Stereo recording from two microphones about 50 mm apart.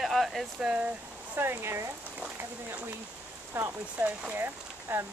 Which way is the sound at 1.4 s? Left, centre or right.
Right.